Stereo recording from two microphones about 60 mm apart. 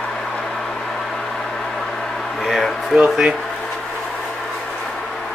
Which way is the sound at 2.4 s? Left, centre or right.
Centre.